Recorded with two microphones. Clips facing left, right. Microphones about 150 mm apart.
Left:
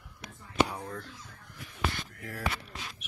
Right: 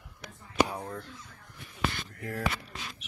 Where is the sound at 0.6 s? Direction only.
25° right (ahead or behind).